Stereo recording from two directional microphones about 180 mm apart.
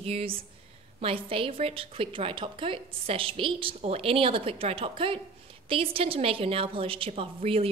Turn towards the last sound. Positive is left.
turn(degrees=-30)  # may be behind; listen again after turning